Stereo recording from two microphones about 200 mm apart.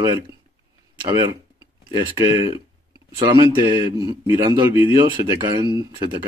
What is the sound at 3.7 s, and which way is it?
A man's voice, 20° right (ahead or behind).